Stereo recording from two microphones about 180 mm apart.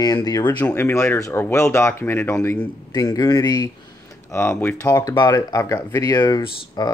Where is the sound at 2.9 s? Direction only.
20° left (ahead or behind).